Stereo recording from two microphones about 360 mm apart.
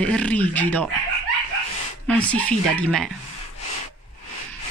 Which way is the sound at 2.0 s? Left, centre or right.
Centre.